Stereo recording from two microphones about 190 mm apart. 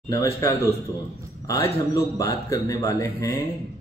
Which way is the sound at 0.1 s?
15° left (ahead or behind).